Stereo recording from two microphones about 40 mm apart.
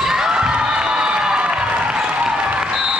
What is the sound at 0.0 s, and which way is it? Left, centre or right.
Cheering, centre.